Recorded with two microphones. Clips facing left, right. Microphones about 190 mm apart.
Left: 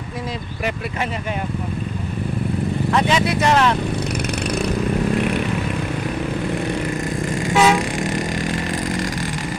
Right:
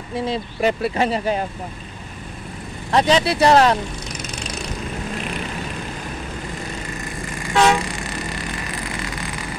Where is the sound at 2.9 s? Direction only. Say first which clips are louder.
Right 3 dB; 35° right (ahead or behind).